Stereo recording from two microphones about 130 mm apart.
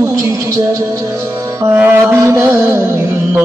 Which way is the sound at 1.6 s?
15° right (ahead or behind).